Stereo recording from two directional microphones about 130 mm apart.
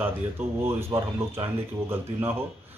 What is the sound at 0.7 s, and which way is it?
Speech, 20° right (ahead or behind).